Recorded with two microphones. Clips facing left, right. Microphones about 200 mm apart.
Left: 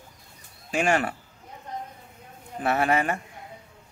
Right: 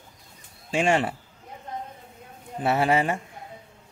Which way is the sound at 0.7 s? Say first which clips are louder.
Right 1 dB; 25° right (ahead or behind).